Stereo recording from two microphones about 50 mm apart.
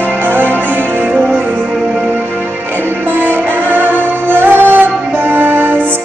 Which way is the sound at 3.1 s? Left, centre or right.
Right.